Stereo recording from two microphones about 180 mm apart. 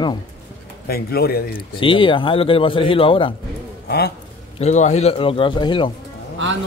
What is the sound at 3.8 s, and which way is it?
Speech, 60° left (ahead or behind).